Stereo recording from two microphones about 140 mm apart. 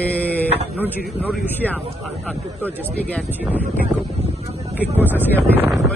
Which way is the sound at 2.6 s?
10° left (ahead or behind).